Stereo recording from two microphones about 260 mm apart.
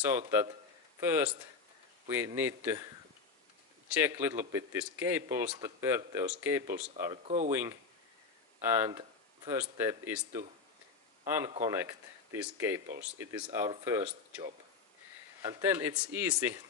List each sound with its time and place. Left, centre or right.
1.0 s speech: centre
4.0 s speech: centre
7.2 s speech: right
8.5 s speech: centre